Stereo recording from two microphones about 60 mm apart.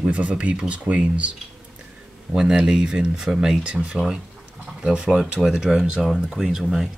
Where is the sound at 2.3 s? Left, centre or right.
Centre.